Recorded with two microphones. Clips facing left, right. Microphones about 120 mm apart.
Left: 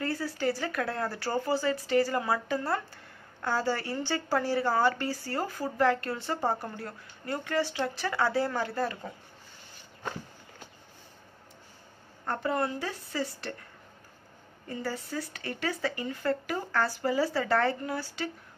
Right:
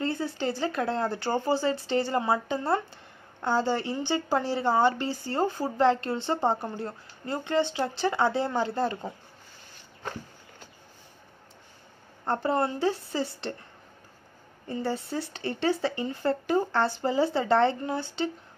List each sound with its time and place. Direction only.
0.0 s a woman's voice: 25° right (ahead or behind)
12.3 s a woman's voice: 30° right (ahead or behind)
14.7 s a woman's voice: 25° right (ahead or behind)